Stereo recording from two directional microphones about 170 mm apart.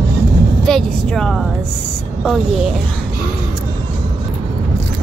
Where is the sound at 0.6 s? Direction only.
5° left (ahead or behind).